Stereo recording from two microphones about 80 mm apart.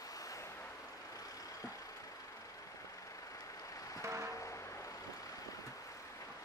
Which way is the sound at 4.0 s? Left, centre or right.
Right.